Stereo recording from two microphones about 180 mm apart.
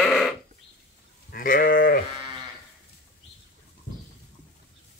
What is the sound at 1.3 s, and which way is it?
Sheep, 50° left (ahead or behind).